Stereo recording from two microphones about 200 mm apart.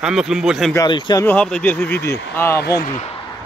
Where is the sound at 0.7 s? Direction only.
20° left (ahead or behind).